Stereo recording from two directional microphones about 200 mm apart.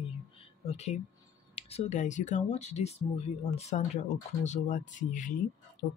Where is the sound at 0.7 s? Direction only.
35° left (ahead or behind).